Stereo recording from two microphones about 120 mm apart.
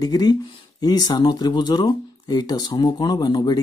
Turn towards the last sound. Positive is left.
turn(degrees=35)  # may be behind; listen again after turning